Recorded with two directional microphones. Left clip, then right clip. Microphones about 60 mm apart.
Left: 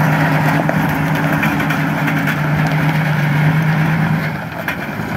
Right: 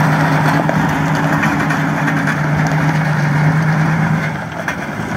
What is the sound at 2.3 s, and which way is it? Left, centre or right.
Wood, left.